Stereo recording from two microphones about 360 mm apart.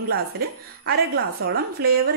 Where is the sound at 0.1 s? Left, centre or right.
Right.